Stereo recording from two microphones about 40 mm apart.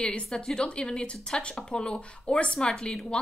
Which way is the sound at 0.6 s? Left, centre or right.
Left.